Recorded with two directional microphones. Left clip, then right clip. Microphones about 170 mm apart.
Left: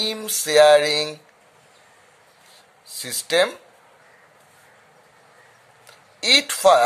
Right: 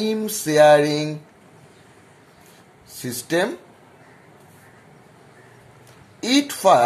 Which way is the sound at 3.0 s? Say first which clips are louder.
Left 2 dB; 50° left (ahead or behind).